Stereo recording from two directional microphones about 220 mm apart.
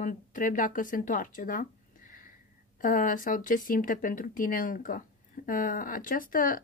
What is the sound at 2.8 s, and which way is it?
A woman's voice, 35° left (ahead or behind).